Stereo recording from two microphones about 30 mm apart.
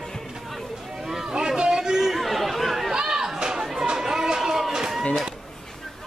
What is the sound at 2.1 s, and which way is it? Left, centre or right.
Chatter, centre.